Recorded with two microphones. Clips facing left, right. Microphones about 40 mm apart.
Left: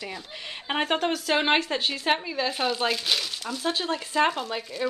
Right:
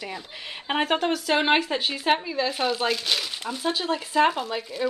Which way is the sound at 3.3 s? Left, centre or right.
Centre.